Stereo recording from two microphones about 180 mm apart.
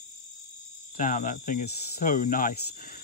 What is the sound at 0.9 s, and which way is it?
Speech, 45° left (ahead or behind).